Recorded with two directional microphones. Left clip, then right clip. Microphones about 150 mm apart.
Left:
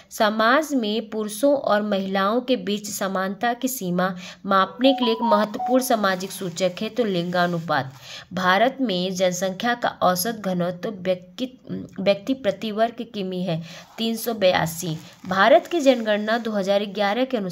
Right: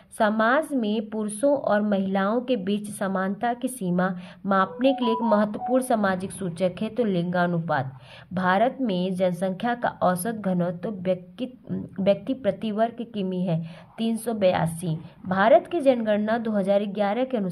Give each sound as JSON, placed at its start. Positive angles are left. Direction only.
{"t": 0.2, "sound": "a woman's voice", "side_deg": 20}